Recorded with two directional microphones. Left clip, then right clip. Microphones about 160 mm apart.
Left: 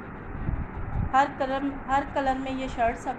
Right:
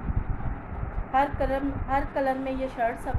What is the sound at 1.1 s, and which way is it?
A woman's voice, 10° left (ahead or behind).